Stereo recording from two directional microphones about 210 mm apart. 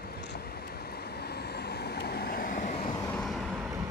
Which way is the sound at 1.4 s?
50° left (ahead or behind).